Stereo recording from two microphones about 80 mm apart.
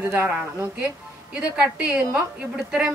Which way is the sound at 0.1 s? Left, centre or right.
Right.